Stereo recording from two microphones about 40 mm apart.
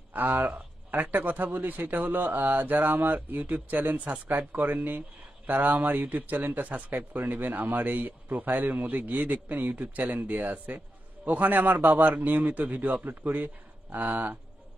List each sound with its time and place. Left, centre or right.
0.1 s speech: right